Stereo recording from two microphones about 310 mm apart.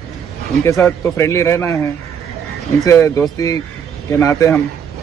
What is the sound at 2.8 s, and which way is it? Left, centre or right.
Speech, centre.